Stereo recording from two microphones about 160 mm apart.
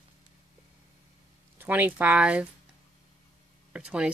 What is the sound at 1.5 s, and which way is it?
Speech, 10° right (ahead or behind).